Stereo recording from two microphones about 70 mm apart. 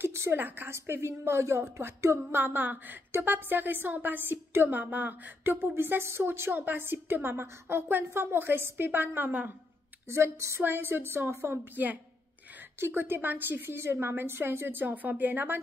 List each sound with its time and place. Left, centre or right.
0.0 s a sound: right
0.4 s a woman's voice: right
10.0 s a woman's voice: right
10.6 s a woman's voice: right
12.8 s a woman's voice: right